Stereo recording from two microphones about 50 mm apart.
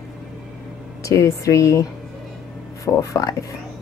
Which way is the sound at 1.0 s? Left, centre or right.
Left.